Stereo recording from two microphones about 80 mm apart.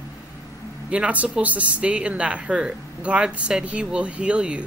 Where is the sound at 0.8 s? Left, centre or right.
Centre.